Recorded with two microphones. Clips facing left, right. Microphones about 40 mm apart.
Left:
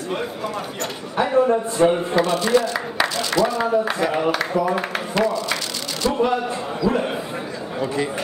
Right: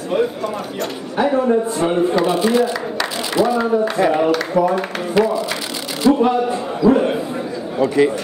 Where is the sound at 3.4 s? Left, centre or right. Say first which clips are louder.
Right 3 dB; centre.